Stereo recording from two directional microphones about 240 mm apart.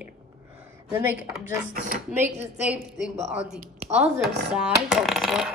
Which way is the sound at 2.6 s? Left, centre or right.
Centre.